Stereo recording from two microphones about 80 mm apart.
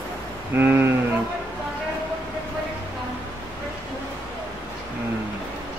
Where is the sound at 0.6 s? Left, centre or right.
Right.